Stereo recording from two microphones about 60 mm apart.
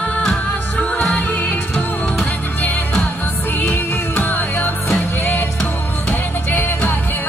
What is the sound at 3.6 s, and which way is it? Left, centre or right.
Music, left.